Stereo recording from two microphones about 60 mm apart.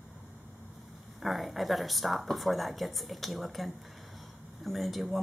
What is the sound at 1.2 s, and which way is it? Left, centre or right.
Speech, centre.